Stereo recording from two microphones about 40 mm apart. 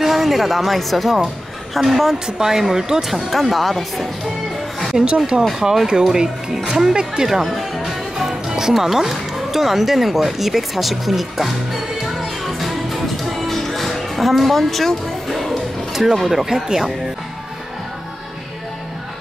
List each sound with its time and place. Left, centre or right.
0.0 s speech: centre
2.2 s speech: centre
3.3 s speech: centre
4.7 s music: centre
5.6 s speech: centre
7.2 s music: centre
8.2 s music: centre